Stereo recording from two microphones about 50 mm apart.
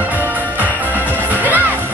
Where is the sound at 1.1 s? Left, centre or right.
Right.